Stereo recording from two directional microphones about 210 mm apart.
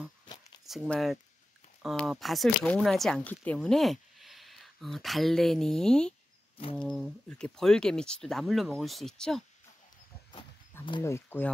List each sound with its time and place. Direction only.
0.7 s speech: centre (ahead or behind)
10.9 s speech: 15° left (ahead or behind)